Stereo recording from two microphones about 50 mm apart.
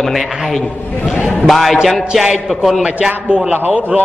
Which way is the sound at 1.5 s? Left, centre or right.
Centre.